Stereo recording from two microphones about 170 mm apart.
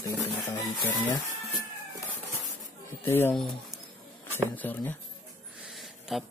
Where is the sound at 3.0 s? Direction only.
15° left (ahead or behind).